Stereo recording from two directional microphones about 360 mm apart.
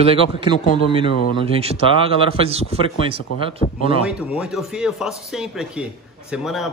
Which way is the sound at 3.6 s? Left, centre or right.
Centre.